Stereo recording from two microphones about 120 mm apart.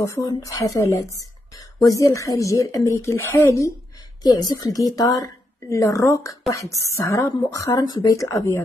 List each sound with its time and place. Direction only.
0.0 s a woman's voice: 25° left (ahead or behind)